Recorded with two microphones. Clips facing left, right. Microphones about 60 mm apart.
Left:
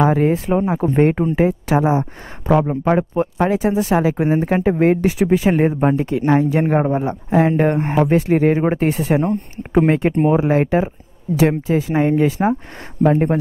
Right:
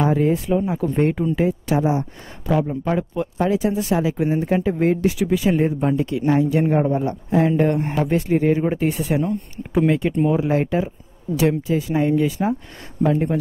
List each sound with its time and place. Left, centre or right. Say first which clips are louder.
0.0 s speech: left 3 dB; left